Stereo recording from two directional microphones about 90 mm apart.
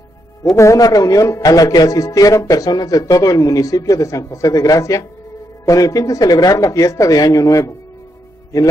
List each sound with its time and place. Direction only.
0.6 s a man's voice: 40° left (ahead or behind)